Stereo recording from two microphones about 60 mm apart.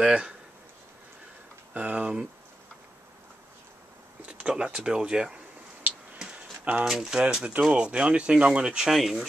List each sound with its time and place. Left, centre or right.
0.0 s speech: centre
1.7 s speech: right
4.3 s speech: centre
6.1 s a sound: centre
6.8 s speech: centre
8.9 s speech: centre